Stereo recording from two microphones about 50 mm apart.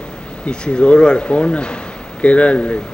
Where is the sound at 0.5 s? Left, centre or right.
Left.